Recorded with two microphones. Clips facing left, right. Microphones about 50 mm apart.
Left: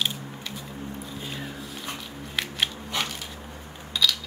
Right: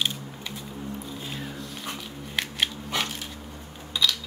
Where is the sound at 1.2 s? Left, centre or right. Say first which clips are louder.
Even; centre.